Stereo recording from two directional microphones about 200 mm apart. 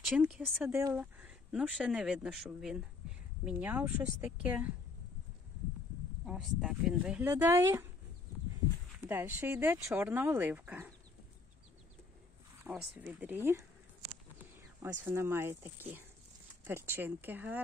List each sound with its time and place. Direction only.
0.0 s speech: 5° right (ahead or behind)
6.2 s speech: 5° right (ahead or behind)
9.0 s speech: 10° right (ahead or behind)
12.6 s speech: 10° right (ahead or behind)
14.8 s speech: 10° right (ahead or behind)